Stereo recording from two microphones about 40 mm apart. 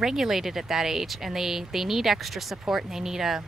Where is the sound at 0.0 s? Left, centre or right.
Centre.